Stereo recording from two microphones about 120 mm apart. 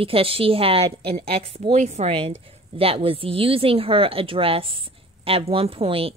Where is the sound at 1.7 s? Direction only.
70° right (ahead or behind).